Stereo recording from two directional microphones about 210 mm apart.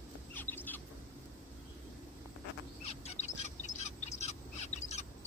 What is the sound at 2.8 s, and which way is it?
Bird, 30° left (ahead or behind).